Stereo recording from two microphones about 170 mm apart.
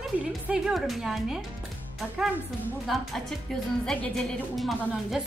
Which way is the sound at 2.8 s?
Centre (ahead or behind).